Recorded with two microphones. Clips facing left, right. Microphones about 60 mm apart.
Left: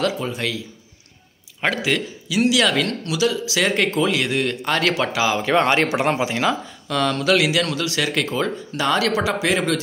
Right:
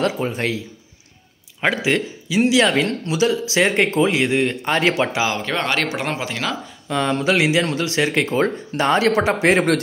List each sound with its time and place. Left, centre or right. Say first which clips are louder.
0.0 s speech: right 2 dB; right
1.8 s speech: right 2 dB; right
5.3 s speech: left 4 dB; centre
5.6 s speech: left 4 dB; centre
6.9 s speech: even; centre; by 9.8 s right